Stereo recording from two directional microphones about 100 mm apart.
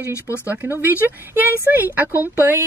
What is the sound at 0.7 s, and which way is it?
Speech, 20° right (ahead or behind).